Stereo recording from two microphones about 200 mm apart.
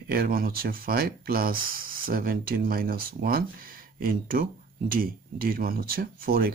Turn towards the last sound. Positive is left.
turn(degrees=-45)  # may be behind; listen again after turning